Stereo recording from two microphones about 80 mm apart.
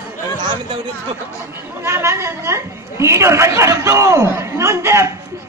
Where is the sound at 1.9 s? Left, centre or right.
Right.